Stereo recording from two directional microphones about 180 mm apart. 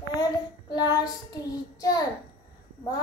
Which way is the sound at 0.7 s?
20° left (ahead or behind).